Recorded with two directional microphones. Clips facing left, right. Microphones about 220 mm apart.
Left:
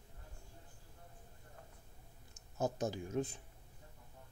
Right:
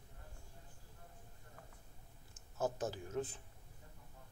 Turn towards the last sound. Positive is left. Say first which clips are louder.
# left 3 dB
turn(degrees=15)  # may be behind; listen again after turning